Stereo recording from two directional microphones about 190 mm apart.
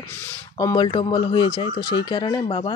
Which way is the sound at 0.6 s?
20° left (ahead or behind).